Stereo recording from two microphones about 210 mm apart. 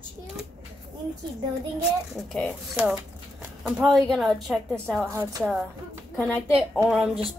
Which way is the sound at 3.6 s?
Centre (ahead or behind).